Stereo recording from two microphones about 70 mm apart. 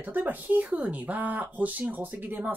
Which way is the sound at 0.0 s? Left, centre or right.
Right.